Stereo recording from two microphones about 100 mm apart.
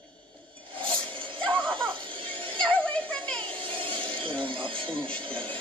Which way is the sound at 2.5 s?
10° left (ahead or behind).